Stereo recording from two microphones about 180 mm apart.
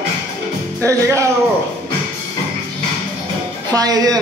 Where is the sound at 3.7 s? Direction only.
20° right (ahead or behind).